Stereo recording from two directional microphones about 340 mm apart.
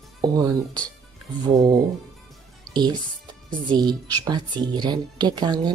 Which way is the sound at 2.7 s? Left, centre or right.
Centre.